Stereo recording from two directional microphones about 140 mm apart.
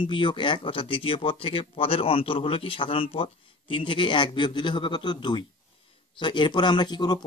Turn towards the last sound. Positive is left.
turn(degrees=30)  # may be behind; listen again after turning